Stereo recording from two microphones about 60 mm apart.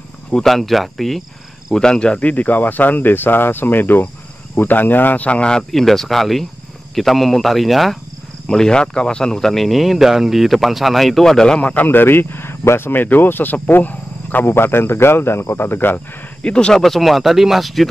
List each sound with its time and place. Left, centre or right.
0.3 s speech: centre
1.8 s speech: centre
5.6 s speech: centre
8.5 s speech: centre
11.7 s speech: left
14.5 s speech: left
16.4 s speech: centre
16.8 s speech: centre